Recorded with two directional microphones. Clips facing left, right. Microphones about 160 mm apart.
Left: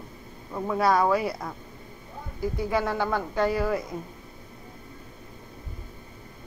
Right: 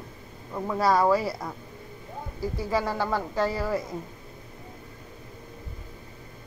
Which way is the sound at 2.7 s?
Centre (ahead or behind).